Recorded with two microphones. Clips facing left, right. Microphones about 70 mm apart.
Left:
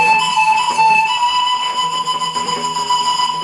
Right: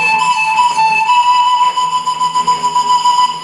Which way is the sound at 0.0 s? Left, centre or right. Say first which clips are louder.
Even; right.